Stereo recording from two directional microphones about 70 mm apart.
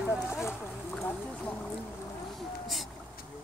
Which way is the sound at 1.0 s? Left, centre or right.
Left.